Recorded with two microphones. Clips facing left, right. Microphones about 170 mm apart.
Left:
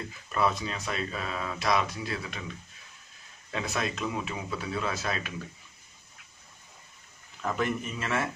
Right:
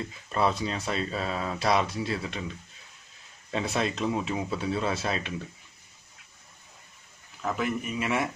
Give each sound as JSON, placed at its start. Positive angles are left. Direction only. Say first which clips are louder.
{"t": 0.3, "sound": "speech", "louder": "right 2 dB", "side_deg": -30}
{"t": 3.5, "sound": "speech", "louder": "right 4 dB", "side_deg": -30}
{"t": 7.4, "sound": "speech", "louder": "right 1 dB", "side_deg": -5}